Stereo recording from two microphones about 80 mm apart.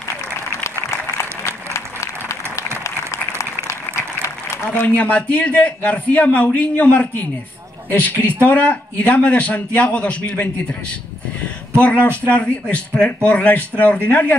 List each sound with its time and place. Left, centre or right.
0.7 s applause: left
4.8 s a man's voice: centre